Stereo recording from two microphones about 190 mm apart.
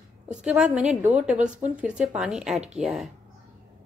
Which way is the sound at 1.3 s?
40° right (ahead or behind).